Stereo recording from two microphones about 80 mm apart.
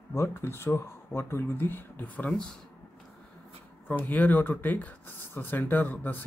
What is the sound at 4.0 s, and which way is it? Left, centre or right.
Speech, left.